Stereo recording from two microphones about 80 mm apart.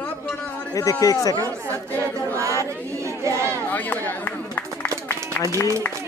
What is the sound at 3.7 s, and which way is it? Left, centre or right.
Speech, left.